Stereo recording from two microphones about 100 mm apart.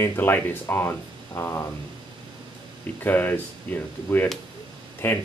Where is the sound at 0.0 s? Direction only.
25° left (ahead or behind).